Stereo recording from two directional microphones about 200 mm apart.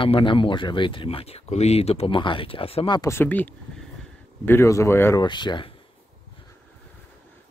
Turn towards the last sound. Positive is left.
turn(degrees=25)  # may be behind; listen again after turning